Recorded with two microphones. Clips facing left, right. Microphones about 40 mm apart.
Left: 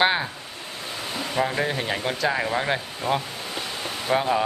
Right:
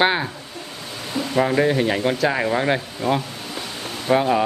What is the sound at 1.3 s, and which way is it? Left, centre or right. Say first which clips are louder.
Speech: right 7 dB; centre.